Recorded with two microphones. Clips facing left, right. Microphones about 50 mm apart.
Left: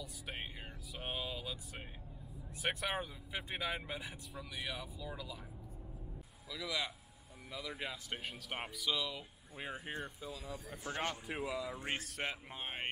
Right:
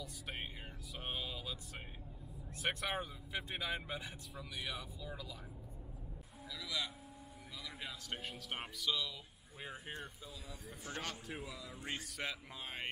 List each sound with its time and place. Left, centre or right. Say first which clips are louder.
0.0 s music: even; centre
0.9 s vehicle: left 2 dB; centre
2.5 s speech: left 1 dB; centre
6.5 s speech: left 3 dB; left
11.9 s speech: even; left